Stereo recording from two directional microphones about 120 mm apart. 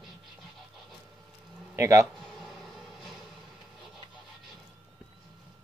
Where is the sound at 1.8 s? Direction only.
25° right (ahead or behind).